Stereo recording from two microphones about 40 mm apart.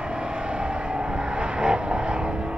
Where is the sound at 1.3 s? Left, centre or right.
Right.